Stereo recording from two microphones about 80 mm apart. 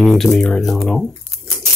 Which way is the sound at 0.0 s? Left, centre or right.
Centre.